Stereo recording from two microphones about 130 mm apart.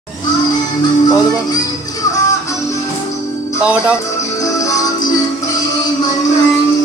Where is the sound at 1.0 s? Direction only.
30° left (ahead or behind).